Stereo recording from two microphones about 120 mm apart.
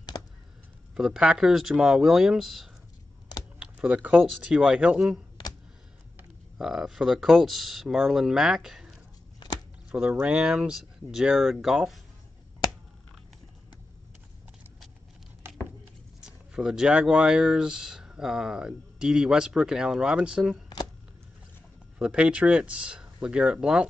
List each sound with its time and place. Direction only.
0.1 s a sound: 30° left (ahead or behind)
0.9 s speech: 5° right (ahead or behind)
3.5 s typing: 10° right (ahead or behind)
4.2 s speech: 5° right (ahead or behind)
6.6 s speech: centre (ahead or behind)
9.8 s speech: 15° right (ahead or behind)
15.4 s a sound: 20° right (ahead or behind)
16.2 s speech: 5° right (ahead or behind)
21.9 s speech: 10° right (ahead or behind)